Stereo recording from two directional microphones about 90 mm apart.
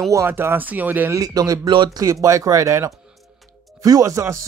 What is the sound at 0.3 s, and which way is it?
Speech, 25° right (ahead or behind).